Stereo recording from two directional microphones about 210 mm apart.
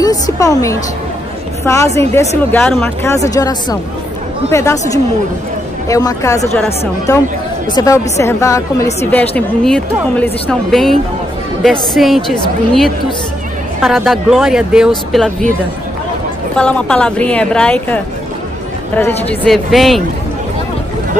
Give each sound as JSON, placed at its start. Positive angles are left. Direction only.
{"t": 0.0, "sound": "a woman's voice", "side_deg": 15}
{"t": 7.7, "sound": "speech", "side_deg": 15}
{"t": 16.5, "sound": "speech", "side_deg": 5}
{"t": 19.4, "sound": "speech", "side_deg": 0}